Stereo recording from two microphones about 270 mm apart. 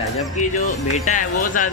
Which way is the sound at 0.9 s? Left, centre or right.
Left.